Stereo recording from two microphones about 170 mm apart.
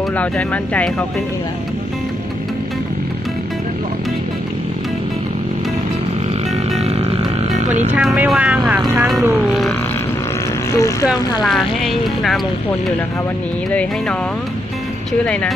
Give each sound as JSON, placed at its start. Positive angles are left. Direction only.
{"t": 0.2, "sound": "speech", "side_deg": 10}
{"t": 7.5, "sound": "a sound", "side_deg": -45}
{"t": 8.0, "sound": "speech", "side_deg": 0}
{"t": 10.7, "sound": "speech", "side_deg": 20}
{"t": 11.1, "sound": "speech", "side_deg": 0}